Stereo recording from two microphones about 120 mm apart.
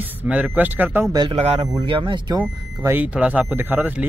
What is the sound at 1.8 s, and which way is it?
Speech, 45° right (ahead or behind).